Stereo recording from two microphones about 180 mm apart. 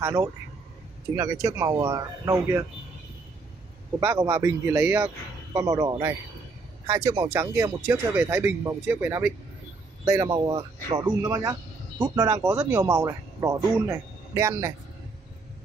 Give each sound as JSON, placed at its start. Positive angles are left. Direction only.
{"t": 0.0, "sound": "speech", "side_deg": -20}
{"t": 4.0, "sound": "speech", "side_deg": -15}